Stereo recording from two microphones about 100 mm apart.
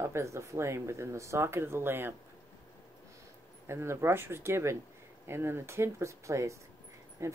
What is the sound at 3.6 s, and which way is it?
Speech, 25° right (ahead or behind).